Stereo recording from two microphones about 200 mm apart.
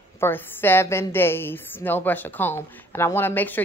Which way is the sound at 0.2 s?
10° left (ahead or behind).